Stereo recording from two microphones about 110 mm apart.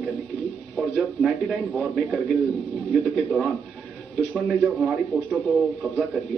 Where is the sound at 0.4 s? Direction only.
Centre (ahead or behind).